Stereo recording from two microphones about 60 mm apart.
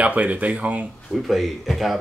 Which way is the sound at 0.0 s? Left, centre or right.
Right.